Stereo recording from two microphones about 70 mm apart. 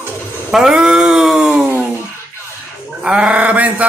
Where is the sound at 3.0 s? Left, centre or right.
Centre.